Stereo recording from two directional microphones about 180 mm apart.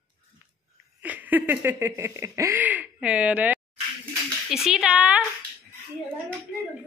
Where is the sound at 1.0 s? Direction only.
10° right (ahead or behind).